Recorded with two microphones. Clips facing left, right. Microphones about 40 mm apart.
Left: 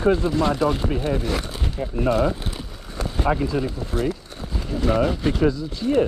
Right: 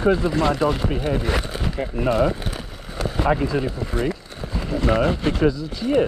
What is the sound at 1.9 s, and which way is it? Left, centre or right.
Speech, centre.